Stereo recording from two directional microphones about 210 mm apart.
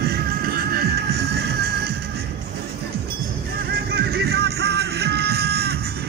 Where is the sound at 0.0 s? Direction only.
45° right (ahead or behind).